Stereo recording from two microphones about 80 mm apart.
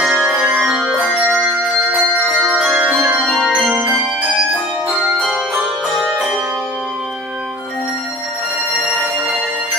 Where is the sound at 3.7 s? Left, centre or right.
Centre.